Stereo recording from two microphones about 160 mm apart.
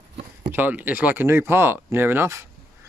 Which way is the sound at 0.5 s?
10° right (ahead or behind).